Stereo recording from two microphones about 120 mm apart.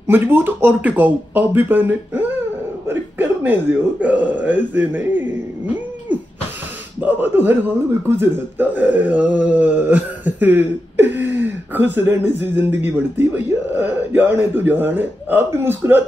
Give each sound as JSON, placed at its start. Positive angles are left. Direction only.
{"t": 0.0, "sound": "speech", "side_deg": -20}
{"t": 2.9, "sound": "a sound", "side_deg": -15}
{"t": 4.0, "sound": "speech", "side_deg": -15}
{"t": 7.0, "sound": "speech", "side_deg": -15}